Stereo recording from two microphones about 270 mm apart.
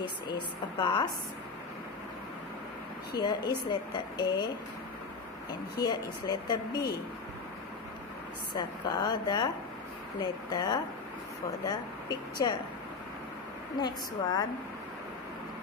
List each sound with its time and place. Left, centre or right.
0.0 s speech: centre
3.2 s speech: centre
5.5 s speech: centre
8.5 s speech: centre
13.7 s speech: centre